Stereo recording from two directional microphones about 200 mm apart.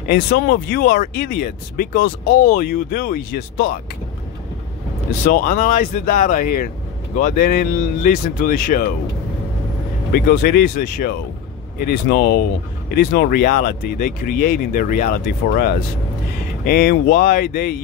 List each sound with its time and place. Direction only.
0.1 s speech: 50° left (ahead or behind)
5.3 s speech: 45° left (ahead or behind)
10.1 s speech: 50° left (ahead or behind)